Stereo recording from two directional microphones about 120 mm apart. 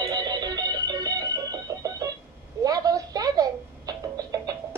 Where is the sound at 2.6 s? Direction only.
30° right (ahead or behind).